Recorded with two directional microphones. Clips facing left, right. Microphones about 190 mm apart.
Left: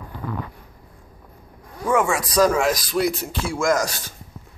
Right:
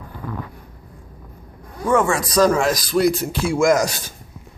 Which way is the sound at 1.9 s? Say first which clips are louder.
Right 2 dB; 5° left (ahead or behind).